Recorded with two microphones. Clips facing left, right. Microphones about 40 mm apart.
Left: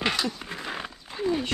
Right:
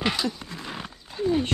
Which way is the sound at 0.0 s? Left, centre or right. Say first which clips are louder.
Right 1 dB; centre.